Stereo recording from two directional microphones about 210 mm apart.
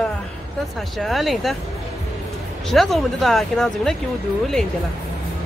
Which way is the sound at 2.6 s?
Centre (ahead or behind).